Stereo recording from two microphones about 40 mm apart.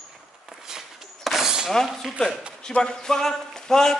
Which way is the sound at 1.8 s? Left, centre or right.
Centre.